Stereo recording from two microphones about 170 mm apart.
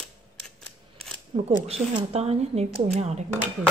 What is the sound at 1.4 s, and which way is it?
Speech, 35° right (ahead or behind).